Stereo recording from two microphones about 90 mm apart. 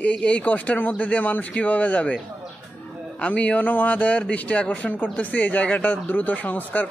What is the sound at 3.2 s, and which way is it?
Speech, 15° left (ahead or behind).